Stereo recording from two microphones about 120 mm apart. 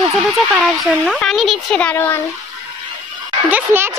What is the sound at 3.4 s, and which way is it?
Speech, 20° right (ahead or behind).